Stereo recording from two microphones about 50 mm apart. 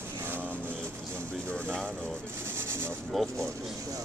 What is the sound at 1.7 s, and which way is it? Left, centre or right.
Speech, centre.